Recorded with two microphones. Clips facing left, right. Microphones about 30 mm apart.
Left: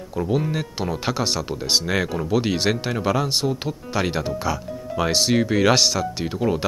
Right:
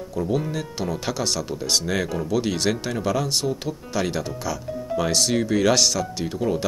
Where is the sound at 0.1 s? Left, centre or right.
Centre.